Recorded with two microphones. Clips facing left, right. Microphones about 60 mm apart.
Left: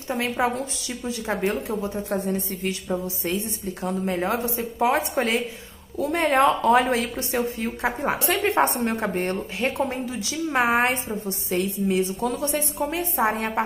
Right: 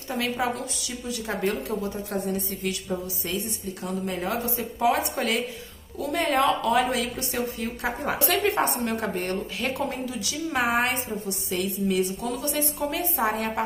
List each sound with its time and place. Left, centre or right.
0.1 s a woman's voice: left